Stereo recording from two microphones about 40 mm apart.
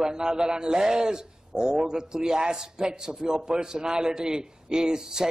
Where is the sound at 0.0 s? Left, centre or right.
Centre.